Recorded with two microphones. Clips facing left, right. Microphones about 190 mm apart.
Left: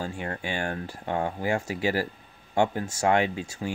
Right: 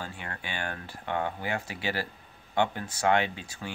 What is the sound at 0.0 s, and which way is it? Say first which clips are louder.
Speech: left 7 dB; 35° left (ahead or behind).